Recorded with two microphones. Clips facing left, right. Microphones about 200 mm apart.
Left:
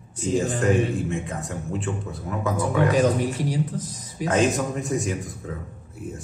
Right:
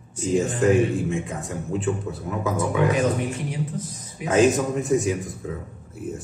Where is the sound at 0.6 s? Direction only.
Centre (ahead or behind).